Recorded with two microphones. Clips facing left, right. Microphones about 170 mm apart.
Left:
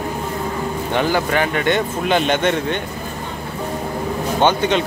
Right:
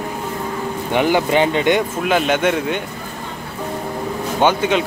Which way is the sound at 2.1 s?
5° right (ahead or behind).